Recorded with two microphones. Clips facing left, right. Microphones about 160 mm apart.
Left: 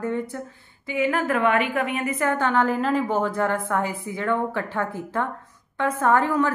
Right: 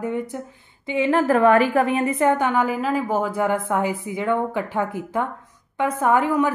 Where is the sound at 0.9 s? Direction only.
25° right (ahead or behind).